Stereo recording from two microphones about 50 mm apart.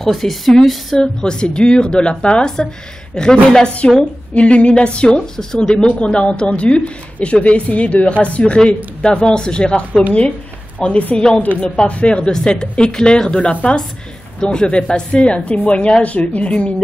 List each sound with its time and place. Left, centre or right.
0.0 s speech: centre
0.9 s a woman's voice: centre
10.8 s a woman's voice: left
11.1 s a woman's voice: centre